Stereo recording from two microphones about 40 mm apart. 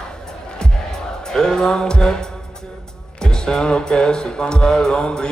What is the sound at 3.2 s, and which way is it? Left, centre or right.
Speech, centre.